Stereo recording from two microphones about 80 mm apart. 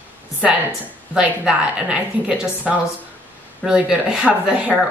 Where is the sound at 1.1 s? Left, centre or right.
Centre.